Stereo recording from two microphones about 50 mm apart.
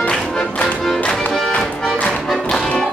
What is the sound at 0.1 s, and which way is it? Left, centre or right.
Music, centre.